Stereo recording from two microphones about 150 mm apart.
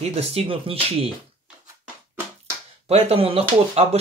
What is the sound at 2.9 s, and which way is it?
Speech, 45° right (ahead or behind).